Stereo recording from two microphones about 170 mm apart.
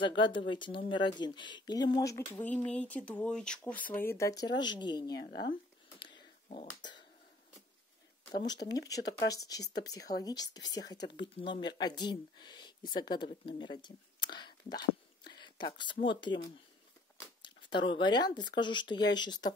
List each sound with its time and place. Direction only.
0.0 s speech: 30° left (ahead or behind)
2.3 s speech: 5° left (ahead or behind); by 5.5 s 25° left (ahead or behind)
5.9 s finger snapping: 25° left (ahead or behind)
8.6 s speech: 20° left (ahead or behind)